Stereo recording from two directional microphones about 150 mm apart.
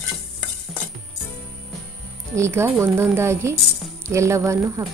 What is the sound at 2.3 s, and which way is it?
A woman's voice, 20° right (ahead or behind).